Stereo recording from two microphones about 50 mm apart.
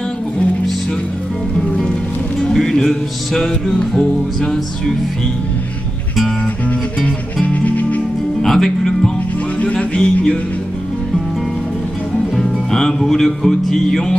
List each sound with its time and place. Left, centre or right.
2.5 s music: centre
7.4 s music: left
8.4 s speech: centre
9.6 s music: left
12.4 s music: centre